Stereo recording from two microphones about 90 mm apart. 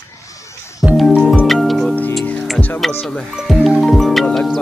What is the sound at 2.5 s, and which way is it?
Music, 20° left (ahead or behind).